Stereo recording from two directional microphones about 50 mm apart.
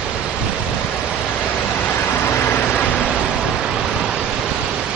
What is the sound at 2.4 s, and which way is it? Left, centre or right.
Vehicle, left.